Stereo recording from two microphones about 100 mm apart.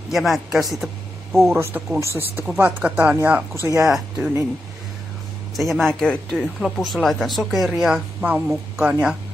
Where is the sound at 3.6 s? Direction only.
35° right (ahead or behind).